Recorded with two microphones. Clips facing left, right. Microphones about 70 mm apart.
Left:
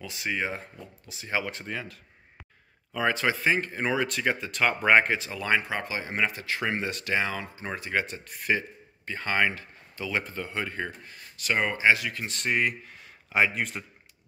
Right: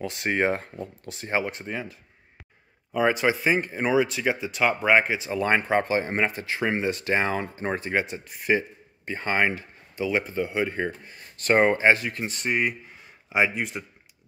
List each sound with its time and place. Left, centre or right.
0.0 s speech: right
1.3 s speech: right; by 5.2 s centre
5.2 s speech: right
11.3 s speech: right
12.3 s speech: centre